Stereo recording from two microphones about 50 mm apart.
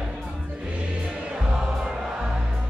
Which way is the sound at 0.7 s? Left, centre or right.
Right.